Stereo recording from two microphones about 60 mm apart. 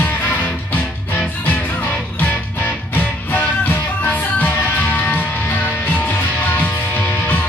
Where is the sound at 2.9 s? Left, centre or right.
Left.